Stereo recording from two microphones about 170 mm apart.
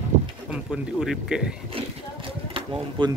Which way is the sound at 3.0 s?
30° right (ahead or behind).